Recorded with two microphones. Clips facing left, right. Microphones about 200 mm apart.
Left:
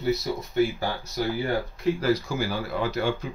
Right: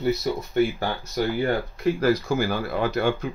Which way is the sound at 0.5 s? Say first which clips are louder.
Right 1 dB; 60° right (ahead or behind).